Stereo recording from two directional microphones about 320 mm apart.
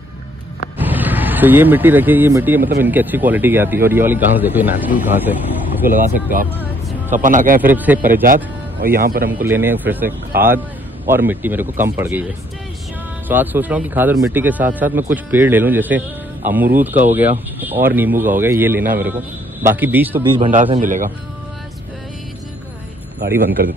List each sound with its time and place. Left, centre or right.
0.7 s speech: centre
5.9 s a man's voice: right
7.2 s a man's voice: right
7.7 s speech: centre
8.0 s a man's voice: right
9.3 s a man's voice: centre
11.1 s speech: centre
13.3 s speech: centre
20.3 s a man's voice: right
23.6 s a man's voice: right